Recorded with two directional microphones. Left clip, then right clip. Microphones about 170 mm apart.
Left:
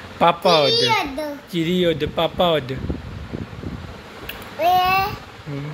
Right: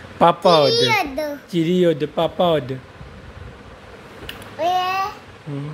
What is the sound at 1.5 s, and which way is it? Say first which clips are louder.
Speech: right 2 dB; 30° right (ahead or behind).